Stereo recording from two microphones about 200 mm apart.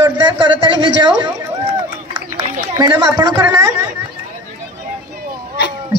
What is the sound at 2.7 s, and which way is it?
Speech, 20° right (ahead or behind).